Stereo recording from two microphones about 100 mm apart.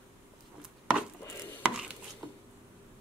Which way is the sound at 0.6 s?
5° right (ahead or behind).